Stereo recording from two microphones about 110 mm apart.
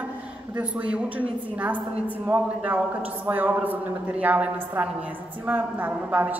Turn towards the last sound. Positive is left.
turn(degrees=-15)  # may be behind; listen again after turning